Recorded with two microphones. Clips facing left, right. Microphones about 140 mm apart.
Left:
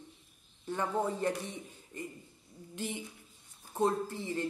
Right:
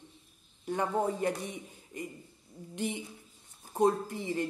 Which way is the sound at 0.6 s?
20° right (ahead or behind).